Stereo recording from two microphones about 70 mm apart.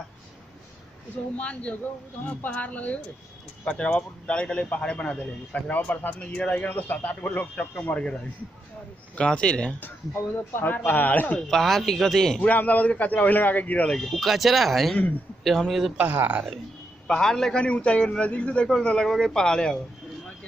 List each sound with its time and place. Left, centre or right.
1.3 s a man's voice: centre
9.1 s a man's voice: centre
10.6 s a man's voice: left
11.5 s speech: centre
12.4 s a man's voice: left
13.8 s speech: centre
16.0 s speech: right
17.1 s a man's voice: centre